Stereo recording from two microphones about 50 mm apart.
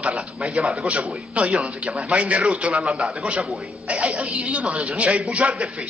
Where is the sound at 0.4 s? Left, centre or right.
Centre.